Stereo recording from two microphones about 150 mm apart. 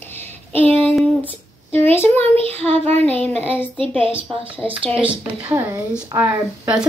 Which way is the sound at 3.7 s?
35° right (ahead or behind).